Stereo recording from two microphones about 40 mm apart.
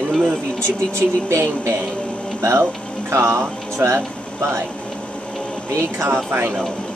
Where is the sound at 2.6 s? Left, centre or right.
Right.